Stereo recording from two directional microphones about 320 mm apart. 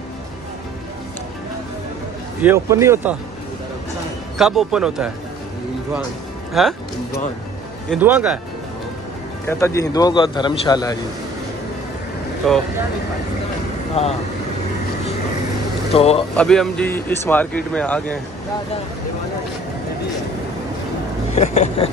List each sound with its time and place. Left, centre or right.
2.4 s speech: centre
4.4 s speech: centre
6.6 s speech: centre
7.9 s speech: centre
9.5 s a man's voice: centre
12.4 s speech: centre
14.0 s speech: centre
15.9 s speech: centre
16.3 s speech: centre
21.4 s vehicle: centre